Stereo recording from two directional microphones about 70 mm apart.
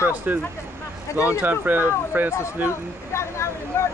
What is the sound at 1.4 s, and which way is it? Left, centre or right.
Speech, right.